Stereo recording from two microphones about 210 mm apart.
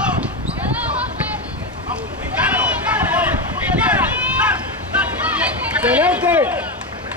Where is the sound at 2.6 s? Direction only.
5° right (ahead or behind).